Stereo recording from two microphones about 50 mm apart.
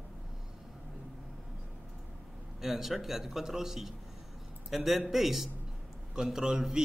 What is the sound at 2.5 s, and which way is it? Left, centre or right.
A man's voice, centre.